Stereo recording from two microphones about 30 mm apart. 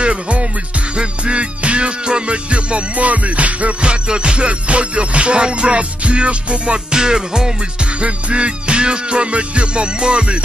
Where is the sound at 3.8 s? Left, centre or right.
Right.